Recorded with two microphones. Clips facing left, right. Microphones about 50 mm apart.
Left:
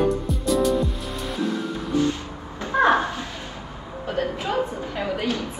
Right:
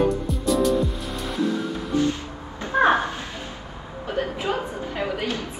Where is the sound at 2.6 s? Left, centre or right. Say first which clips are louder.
Even; right.